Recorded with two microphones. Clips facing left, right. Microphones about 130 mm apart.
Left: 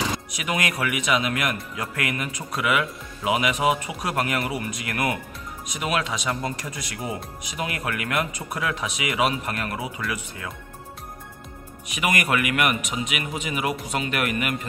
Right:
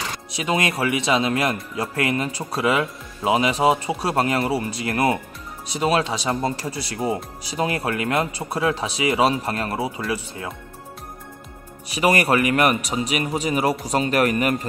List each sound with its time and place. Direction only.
0.3 s speech: 30° right (ahead or behind)
11.9 s speech: 35° right (ahead or behind)